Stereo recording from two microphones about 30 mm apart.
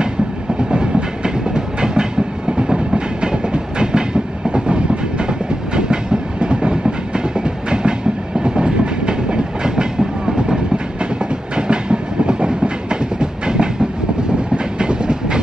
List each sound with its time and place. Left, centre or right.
0.7 s train: right
11.5 s train: right
14.8 s train: right